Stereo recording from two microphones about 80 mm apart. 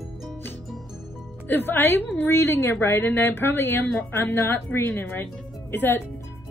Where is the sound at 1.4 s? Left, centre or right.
Left.